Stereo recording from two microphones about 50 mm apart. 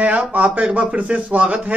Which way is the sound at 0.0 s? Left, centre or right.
Right.